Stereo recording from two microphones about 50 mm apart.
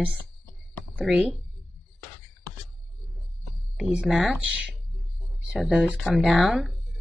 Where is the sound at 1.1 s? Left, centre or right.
Centre.